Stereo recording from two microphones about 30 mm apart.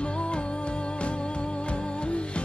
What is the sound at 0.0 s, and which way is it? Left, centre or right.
Music, left.